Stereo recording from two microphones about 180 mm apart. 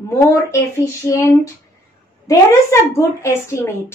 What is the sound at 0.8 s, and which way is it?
A woman's voice, 15° left (ahead or behind).